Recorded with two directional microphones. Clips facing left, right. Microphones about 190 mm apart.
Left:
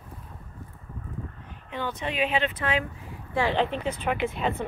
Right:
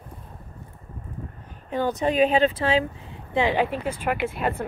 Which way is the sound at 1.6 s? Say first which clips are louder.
Right 8 dB; 40° right (ahead or behind).